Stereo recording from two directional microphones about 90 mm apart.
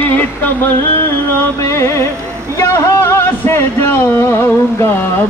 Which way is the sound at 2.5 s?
30° left (ahead or behind).